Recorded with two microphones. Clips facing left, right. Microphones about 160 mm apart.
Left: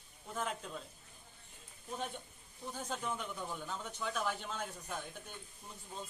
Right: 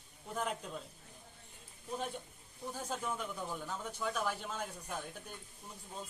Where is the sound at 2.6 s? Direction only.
5° right (ahead or behind).